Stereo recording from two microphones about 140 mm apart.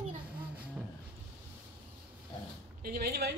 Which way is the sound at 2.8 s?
90° right.